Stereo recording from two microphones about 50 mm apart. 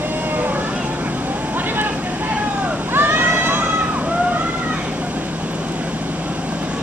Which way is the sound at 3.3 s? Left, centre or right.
Right.